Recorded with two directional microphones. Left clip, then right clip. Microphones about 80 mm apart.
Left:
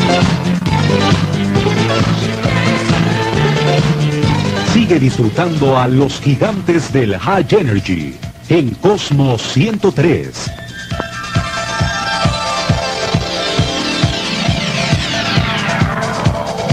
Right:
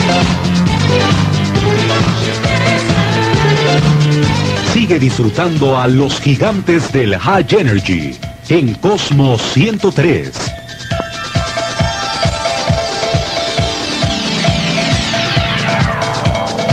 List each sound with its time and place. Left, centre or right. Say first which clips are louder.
1.0 s music: right 1 dB; right
4.7 s speech: left 1 dB; right